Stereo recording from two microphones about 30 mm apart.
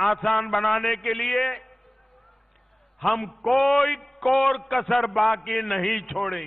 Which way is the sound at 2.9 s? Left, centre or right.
Centre.